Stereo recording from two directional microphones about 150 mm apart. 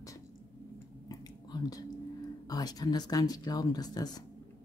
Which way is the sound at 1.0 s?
25° left (ahead or behind).